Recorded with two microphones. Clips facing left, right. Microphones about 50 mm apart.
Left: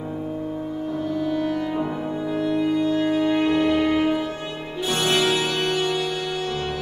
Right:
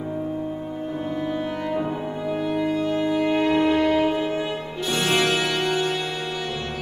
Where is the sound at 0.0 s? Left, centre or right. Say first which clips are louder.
Right 1 dB; centre.